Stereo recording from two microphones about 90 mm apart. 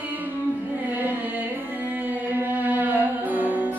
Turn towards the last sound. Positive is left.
turn(degrees=-20)  # may be behind; listen again after turning